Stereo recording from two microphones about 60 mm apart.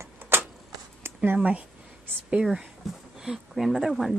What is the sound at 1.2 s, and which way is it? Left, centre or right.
Speech, right.